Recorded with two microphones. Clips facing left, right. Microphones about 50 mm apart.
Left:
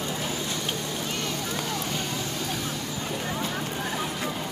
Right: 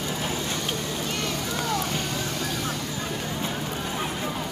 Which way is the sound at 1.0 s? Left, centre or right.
Right.